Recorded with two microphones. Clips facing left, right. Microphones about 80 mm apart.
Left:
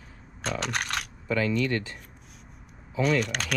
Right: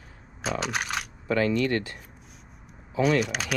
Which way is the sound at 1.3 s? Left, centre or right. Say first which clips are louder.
Right 2 dB; right.